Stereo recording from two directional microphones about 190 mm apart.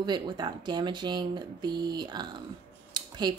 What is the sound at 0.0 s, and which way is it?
A woman's voice, 25° right (ahead or behind).